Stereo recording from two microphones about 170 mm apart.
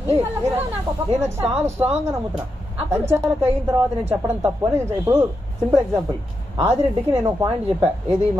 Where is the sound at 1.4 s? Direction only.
35° right (ahead or behind).